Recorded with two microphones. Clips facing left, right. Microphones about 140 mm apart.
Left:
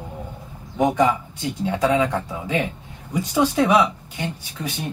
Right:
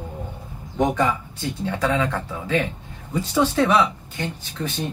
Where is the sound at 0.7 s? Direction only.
10° left (ahead or behind).